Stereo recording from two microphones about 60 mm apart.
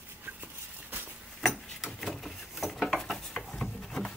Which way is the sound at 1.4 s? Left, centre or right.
Centre.